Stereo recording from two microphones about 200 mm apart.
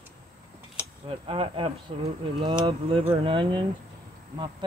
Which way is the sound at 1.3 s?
25° right (ahead or behind).